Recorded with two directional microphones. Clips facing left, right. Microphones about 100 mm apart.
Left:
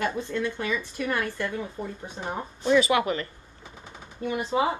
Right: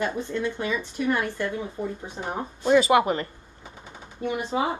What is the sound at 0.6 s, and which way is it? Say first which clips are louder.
Speech: right 2 dB; 25° right (ahead or behind).